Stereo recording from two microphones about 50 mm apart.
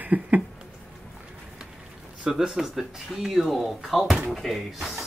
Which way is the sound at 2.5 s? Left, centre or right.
Centre.